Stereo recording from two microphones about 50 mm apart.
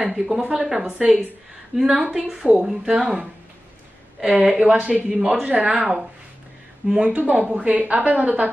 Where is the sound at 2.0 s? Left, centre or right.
Centre.